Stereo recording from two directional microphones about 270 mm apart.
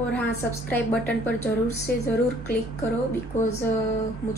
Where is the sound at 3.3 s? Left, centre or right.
Left.